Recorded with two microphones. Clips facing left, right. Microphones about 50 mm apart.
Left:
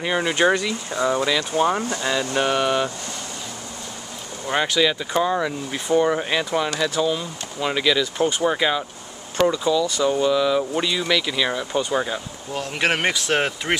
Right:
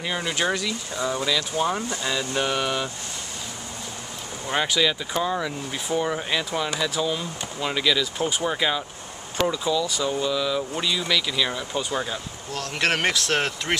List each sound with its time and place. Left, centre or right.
0.0 s speech: centre
1.8 s speech: left
2.0 s speech: centre
4.5 s speech: centre
10.0 s speech: centre